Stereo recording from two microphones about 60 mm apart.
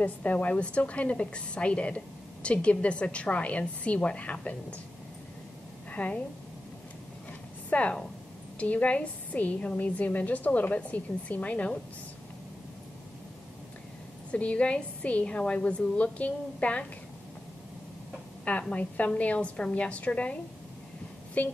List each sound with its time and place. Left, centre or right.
0.0 s a woman's voice: left
5.9 s a woman's voice: left
7.7 s a woman's voice: left
14.3 s a woman's voice: centre
18.6 s a woman's voice: left
21.4 s a woman's voice: left